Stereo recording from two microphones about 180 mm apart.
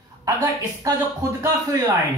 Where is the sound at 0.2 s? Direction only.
15° right (ahead or behind).